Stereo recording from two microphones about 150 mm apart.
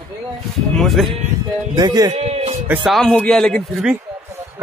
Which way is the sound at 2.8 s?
5° left (ahead or behind).